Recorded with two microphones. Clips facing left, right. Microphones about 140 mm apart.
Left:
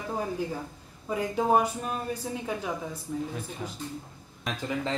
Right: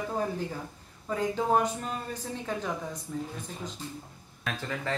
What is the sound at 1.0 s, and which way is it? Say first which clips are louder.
Speech: left 2 dB; 10° left (ahead or behind).